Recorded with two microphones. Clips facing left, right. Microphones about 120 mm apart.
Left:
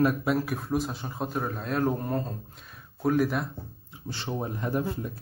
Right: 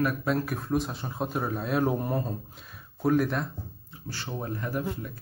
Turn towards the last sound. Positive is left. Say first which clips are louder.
# left 2 dB
turn(degrees=25)  # may be behind; listen again after turning